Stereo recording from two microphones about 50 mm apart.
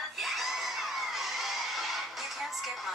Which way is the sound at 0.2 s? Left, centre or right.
Centre.